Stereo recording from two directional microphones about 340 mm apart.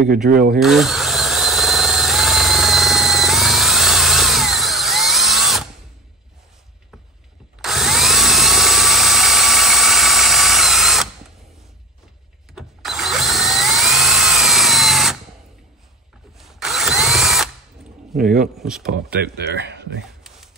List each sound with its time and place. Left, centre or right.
0.3 s speech: right
0.6 s drill: centre
7.6 s drill: centre
12.5 s drill: centre
16.3 s drill: centre
18.6 s speech: centre
19.0 s speech: right